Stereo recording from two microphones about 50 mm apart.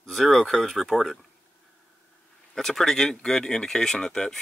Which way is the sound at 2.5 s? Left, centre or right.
Centre.